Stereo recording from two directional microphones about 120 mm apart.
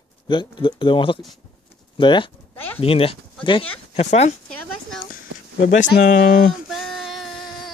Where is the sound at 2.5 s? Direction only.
15° left (ahead or behind).